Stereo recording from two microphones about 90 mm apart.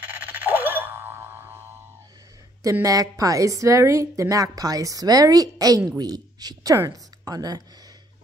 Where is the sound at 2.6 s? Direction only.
35° right (ahead or behind).